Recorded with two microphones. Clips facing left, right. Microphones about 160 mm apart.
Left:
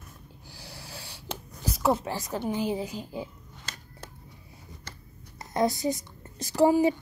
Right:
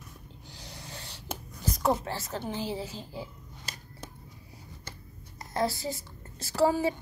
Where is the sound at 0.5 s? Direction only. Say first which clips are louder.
Left 1 dB; 10° left (ahead or behind).